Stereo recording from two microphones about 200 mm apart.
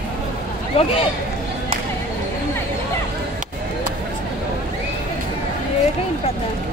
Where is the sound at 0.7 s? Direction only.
30° left (ahead or behind).